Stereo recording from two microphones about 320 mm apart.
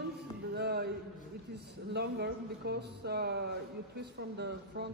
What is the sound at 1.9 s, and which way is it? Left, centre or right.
A man's voice, right.